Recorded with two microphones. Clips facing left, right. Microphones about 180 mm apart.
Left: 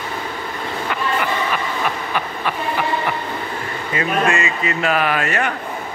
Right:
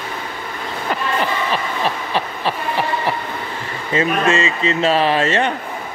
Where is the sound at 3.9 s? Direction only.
25° right (ahead or behind).